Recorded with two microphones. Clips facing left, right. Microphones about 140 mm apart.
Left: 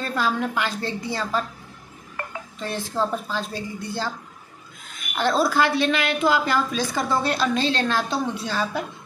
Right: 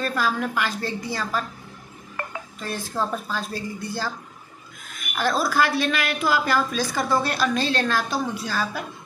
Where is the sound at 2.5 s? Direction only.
20° left (ahead or behind).